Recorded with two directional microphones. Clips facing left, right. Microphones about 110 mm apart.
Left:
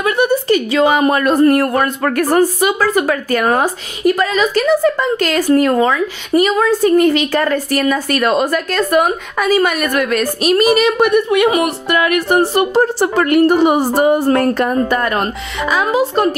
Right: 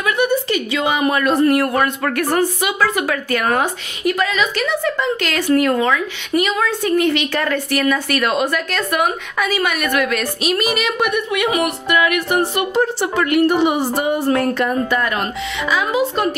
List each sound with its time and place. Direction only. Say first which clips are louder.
0.0 s a woman's voice: left 3 dB; 35° left (ahead or behind)